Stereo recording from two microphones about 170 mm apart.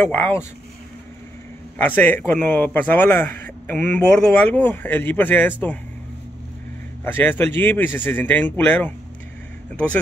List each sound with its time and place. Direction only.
0.0 s a man's voice: 10° left (ahead or behind)
1.8 s a man's voice: 10° left (ahead or behind)
7.1 s a man's voice: 10° left (ahead or behind)